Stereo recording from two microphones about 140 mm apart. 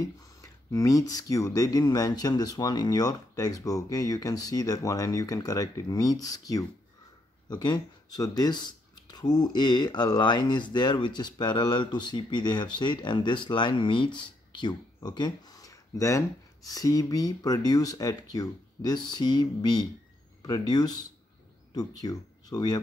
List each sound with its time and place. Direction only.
0.0 s speech: 25° left (ahead or behind)